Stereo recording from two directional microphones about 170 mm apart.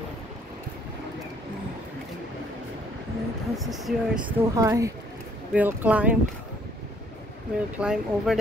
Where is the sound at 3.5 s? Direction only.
Centre (ahead or behind).